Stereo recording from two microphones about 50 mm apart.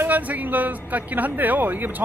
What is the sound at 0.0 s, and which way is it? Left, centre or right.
Speech, right.